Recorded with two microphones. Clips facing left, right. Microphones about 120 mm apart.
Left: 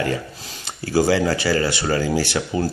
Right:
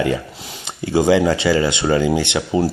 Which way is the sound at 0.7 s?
20° right (ahead or behind).